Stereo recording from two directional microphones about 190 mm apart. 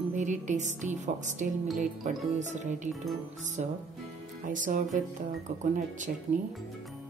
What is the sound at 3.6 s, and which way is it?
Speech, 45° right (ahead or behind).